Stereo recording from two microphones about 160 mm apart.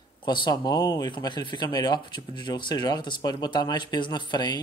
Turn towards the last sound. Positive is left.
turn(degrees=25)  # may be behind; listen again after turning